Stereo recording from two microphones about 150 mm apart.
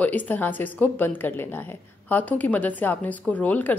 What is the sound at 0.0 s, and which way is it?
A woman's voice, 10° left (ahead or behind).